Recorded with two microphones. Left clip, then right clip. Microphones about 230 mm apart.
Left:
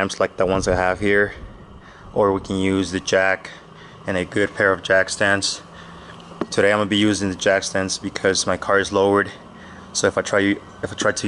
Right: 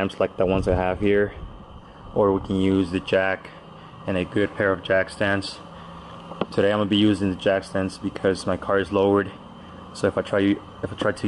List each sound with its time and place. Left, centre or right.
0.2 s speech: centre
6.5 s speech: centre